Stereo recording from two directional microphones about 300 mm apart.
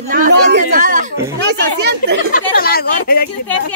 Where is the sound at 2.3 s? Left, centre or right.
Left.